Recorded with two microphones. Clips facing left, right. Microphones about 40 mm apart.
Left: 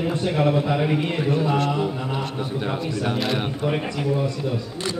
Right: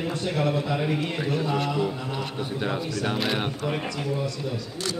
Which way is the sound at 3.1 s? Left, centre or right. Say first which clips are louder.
Left 2 dB; centre.